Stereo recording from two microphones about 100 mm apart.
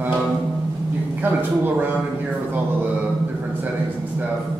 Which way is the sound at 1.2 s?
20° right (ahead or behind).